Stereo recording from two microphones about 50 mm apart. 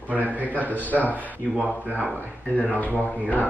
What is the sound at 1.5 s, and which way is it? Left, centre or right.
Speech, right.